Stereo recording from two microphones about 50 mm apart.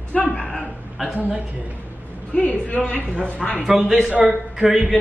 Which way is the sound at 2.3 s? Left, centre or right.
Left.